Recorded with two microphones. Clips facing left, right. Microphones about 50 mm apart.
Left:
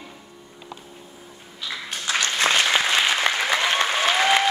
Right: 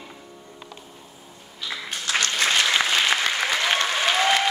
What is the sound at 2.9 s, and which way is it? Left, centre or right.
Applause, left.